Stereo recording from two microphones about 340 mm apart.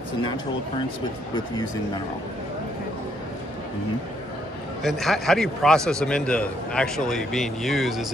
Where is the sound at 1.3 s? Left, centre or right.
Centre.